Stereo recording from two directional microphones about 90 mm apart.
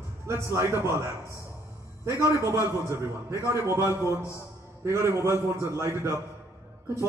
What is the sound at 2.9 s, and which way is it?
A man's voice, 35° right (ahead or behind).